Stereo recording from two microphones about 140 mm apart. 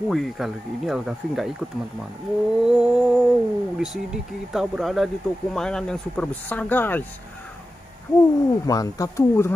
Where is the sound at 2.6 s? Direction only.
5° right (ahead or behind).